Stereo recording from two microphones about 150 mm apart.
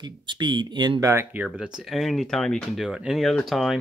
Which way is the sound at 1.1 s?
10° right (ahead or behind).